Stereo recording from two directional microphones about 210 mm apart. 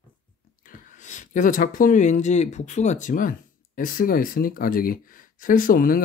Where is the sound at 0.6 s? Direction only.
40° left (ahead or behind).